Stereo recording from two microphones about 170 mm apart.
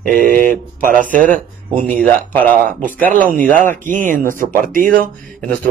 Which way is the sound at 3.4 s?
55° right (ahead or behind).